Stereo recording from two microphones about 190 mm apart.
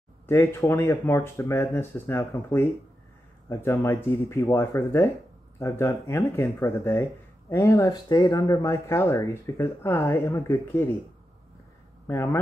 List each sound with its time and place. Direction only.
0.3 s speech: 10° left (ahead or behind)
3.8 s speech: 20° left (ahead or behind)
12.1 s speech: 15° left (ahead or behind)